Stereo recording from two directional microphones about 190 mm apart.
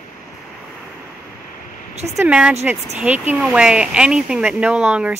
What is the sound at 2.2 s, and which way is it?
Speech, 5° right (ahead or behind).